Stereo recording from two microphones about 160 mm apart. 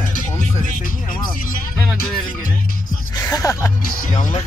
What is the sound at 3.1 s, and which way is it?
Speech, 20° left (ahead or behind).